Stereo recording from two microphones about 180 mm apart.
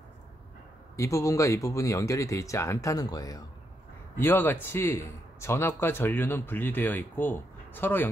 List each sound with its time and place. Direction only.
0.9 s speech: 15° left (ahead or behind)
4.2 s speech: 10° left (ahead or behind)